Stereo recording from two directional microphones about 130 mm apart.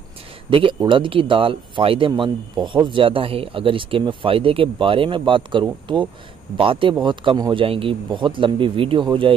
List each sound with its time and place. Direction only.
0.5 s speech: 45° right (ahead or behind)